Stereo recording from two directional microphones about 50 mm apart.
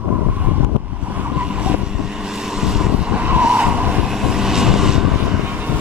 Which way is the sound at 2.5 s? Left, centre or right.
Centre.